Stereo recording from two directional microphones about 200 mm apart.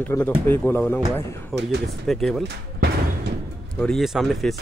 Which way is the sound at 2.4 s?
55° right (ahead or behind).